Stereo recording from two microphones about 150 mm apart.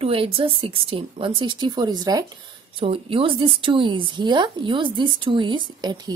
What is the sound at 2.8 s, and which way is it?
A woman's voice, 35° right (ahead or behind).